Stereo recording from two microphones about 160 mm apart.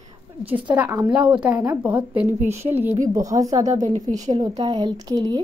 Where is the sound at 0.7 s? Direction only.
15° right (ahead or behind).